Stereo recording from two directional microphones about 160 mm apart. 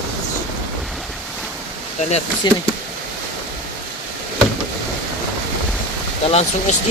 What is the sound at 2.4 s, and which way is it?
Speech, 30° left (ahead or behind).